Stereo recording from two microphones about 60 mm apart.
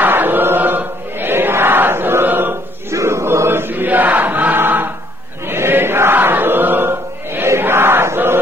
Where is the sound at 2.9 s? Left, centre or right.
Right.